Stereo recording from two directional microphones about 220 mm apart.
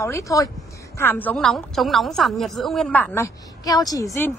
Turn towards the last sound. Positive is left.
turn(degrees=15)  # may be behind; listen again after turning